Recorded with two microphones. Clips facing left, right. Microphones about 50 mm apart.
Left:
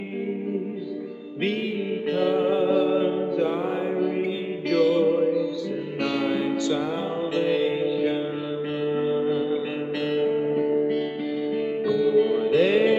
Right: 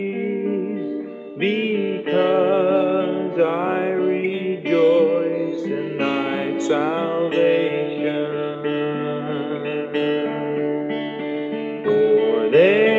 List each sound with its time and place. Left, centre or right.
1.4 s music: right
3.3 s music: right